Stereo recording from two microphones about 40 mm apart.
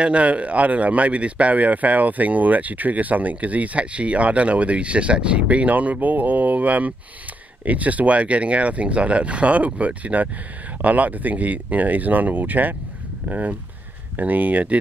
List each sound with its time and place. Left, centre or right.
0.0 s a man's voice: right